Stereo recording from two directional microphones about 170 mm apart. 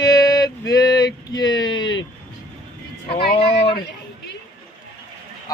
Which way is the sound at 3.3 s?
35° left (ahead or behind).